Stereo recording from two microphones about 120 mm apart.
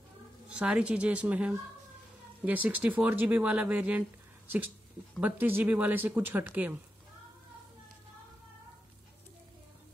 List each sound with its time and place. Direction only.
0.5 s speech: 10° right (ahead or behind)
5.2 s speech: 15° right (ahead or behind)